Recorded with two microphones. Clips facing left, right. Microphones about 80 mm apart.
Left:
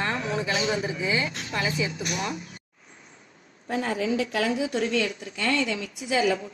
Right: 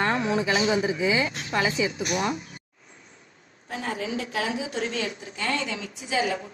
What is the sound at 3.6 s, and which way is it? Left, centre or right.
Speech, left.